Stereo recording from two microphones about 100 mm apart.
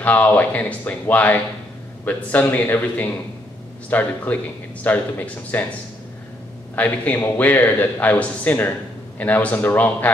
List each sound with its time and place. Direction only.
0.0 s a man's voice: 20° left (ahead or behind)
6.7 s a man's voice: 15° left (ahead or behind)